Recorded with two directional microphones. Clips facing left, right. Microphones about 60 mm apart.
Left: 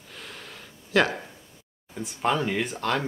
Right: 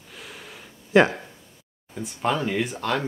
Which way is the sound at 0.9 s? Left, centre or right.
Right.